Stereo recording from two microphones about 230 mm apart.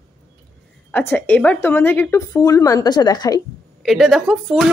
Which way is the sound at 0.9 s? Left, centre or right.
Centre.